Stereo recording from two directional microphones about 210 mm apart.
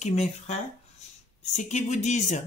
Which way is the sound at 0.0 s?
30° left (ahead or behind).